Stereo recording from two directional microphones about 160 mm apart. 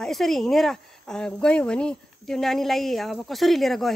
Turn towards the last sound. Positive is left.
turn(degrees=0)  # may be behind; listen again after turning